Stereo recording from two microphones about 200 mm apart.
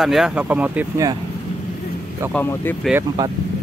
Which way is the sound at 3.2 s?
20° right (ahead or behind).